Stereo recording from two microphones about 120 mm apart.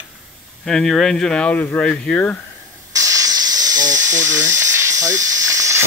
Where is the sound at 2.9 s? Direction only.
30° right (ahead or behind).